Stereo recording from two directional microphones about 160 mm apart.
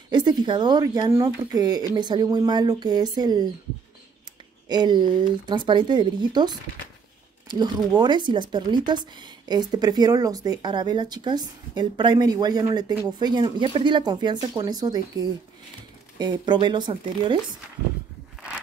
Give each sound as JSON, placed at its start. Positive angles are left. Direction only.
{"t": 0.1, "sound": "speech", "side_deg": -25}
{"t": 4.6, "sound": "speech", "side_deg": -25}